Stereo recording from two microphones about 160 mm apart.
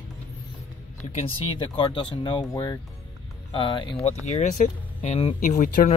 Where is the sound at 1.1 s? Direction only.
35° left (ahead or behind).